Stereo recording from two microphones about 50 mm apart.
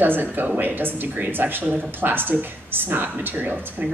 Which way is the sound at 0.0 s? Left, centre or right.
Right.